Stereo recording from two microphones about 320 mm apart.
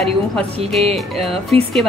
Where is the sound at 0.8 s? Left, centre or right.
Centre.